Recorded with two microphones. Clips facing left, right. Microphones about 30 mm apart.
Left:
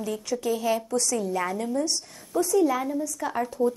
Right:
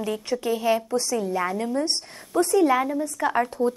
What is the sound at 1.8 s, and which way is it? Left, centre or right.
A woman's voice, right.